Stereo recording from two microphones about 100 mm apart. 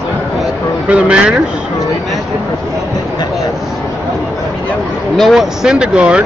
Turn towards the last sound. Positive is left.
turn(degrees=-10)  # may be behind; listen again after turning